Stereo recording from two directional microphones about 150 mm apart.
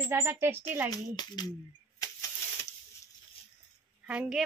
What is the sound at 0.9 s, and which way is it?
Speech, 25° left (ahead or behind).